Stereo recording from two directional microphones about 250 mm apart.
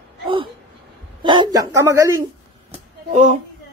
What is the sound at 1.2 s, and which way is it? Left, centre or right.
Speech, centre.